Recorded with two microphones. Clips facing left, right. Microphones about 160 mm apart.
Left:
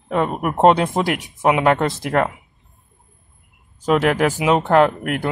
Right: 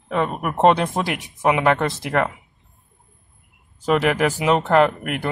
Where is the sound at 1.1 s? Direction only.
Centre (ahead or behind).